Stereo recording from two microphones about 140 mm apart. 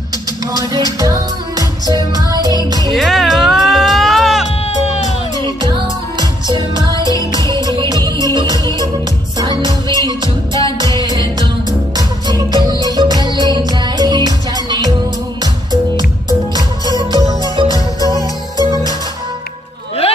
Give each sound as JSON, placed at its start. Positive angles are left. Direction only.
{"t": 0.7, "sound": "music", "side_deg": -25}
{"t": 2.9, "sound": "music", "side_deg": 0}
{"t": 4.8, "sound": "music", "side_deg": 50}
{"t": 6.1, "sound": "music", "side_deg": -35}
{"t": 16.3, "sound": "music", "side_deg": -30}